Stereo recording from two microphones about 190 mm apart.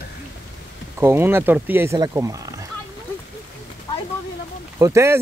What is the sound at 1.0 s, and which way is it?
Speech, 10° right (ahead or behind).